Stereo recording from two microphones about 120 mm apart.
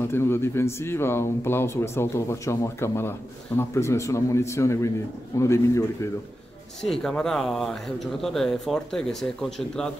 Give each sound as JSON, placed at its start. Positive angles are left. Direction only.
{"t": 0.0, "sound": "speech", "side_deg": 20}
{"t": 6.8, "sound": "speech", "side_deg": 5}